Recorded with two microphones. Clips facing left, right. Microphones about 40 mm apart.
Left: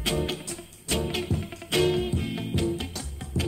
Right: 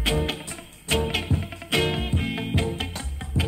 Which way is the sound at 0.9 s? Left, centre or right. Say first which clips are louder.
Right 3 dB; right.